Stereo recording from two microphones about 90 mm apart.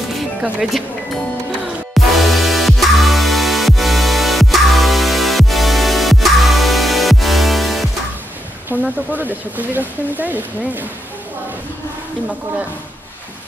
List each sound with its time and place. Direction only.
0.1 s music: centre (ahead or behind)
2.0 s music: centre (ahead or behind)
8.7 s speech: 20° right (ahead or behind)